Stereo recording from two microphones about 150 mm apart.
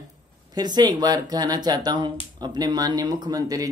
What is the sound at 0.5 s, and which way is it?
Speech, 25° right (ahead or behind).